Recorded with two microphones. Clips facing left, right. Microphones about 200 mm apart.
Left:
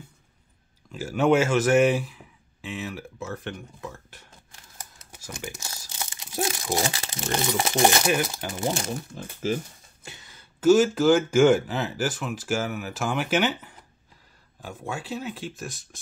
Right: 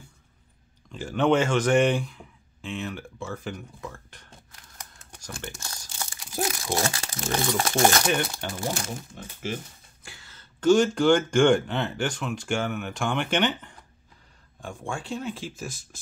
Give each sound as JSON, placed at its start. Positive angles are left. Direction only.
{"t": 0.9, "sound": "speech", "side_deg": 5}
{"t": 5.9, "sound": "crumpling", "side_deg": 20}
{"t": 6.6, "sound": "speech", "side_deg": 20}
{"t": 8.0, "sound": "speech", "side_deg": 5}
{"t": 8.5, "sound": "speech", "side_deg": 20}
{"t": 8.8, "sound": "speech", "side_deg": 40}
{"t": 10.0, "sound": "speech", "side_deg": 20}